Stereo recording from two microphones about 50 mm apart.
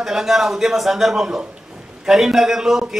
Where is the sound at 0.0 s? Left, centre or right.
Centre.